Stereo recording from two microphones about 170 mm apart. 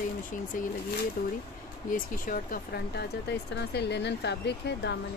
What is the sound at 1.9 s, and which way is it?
Speech, 55° left (ahead or behind).